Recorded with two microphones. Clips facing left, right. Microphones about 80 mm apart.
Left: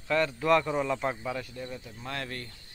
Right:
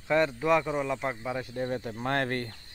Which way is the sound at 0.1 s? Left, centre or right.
Centre.